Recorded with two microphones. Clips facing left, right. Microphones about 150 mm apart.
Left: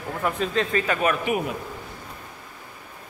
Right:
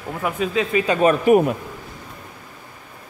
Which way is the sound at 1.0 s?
40° right (ahead or behind).